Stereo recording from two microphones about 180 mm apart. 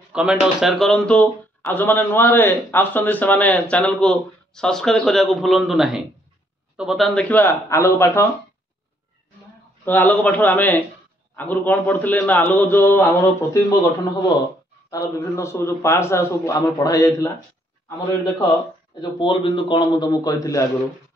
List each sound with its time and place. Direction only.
0.1 s a man's voice: 5° right (ahead or behind); by 8.3 s 15° left (ahead or behind)
9.8 s a man's voice: 10° left (ahead or behind)